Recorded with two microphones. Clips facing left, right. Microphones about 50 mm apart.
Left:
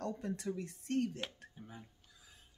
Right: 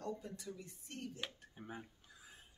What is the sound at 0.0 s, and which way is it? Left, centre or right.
Speech, left.